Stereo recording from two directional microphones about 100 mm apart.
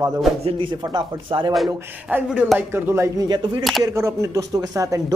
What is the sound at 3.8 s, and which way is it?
Speech, 30° right (ahead or behind).